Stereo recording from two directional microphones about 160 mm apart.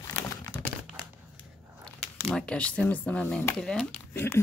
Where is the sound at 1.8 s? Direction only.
5° left (ahead or behind).